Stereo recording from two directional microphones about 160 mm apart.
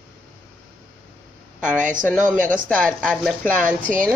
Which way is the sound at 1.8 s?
55° right (ahead or behind).